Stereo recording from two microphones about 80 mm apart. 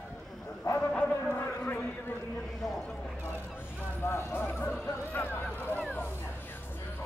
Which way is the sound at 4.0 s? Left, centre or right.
Left.